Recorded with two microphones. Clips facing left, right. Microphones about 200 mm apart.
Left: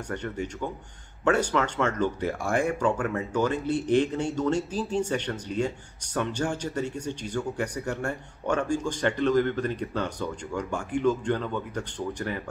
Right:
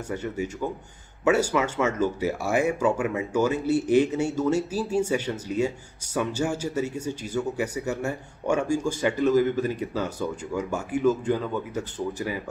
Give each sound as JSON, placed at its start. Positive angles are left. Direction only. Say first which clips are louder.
{"t": 0.1, "sound": "speech", "louder": "right 3 dB", "side_deg": -5}